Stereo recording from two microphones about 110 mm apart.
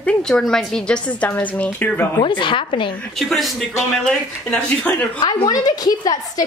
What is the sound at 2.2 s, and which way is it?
Speech, 45° left (ahead or behind).